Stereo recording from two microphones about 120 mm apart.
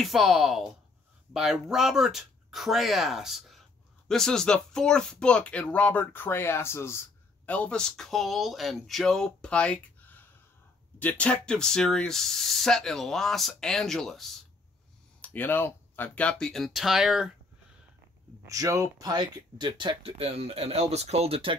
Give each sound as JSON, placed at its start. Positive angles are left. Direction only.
{"t": 0.0, "sound": "speech", "side_deg": 0}
{"t": 15.2, "sound": "speech", "side_deg": 15}
{"t": 18.5, "sound": "speech", "side_deg": -25}